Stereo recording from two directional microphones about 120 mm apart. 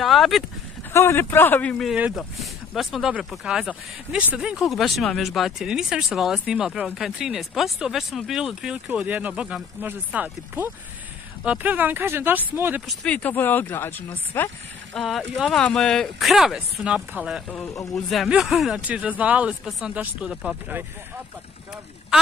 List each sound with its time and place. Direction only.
0.0 s speech: centre (ahead or behind)
0.9 s speech: 20° left (ahead or behind)
2.1 s speech: centre (ahead or behind); by 12.8 s 15° right (ahead or behind)
12.8 s speech: 10° left (ahead or behind)
15.0 s speech: centre (ahead or behind)
18.9 s speech: 10° right (ahead or behind)